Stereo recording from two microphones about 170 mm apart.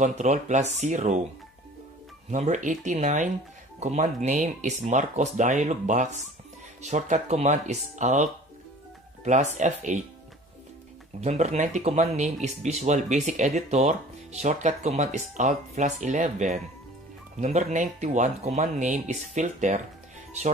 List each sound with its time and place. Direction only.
0.0 s speech: 40° right (ahead or behind)
2.3 s speech: 45° right (ahead or behind)
11.1 s speech: 40° right (ahead or behind)